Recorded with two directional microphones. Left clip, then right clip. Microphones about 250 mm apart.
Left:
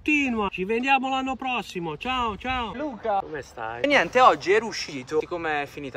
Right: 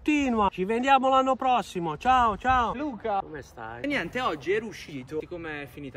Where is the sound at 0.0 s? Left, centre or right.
Centre.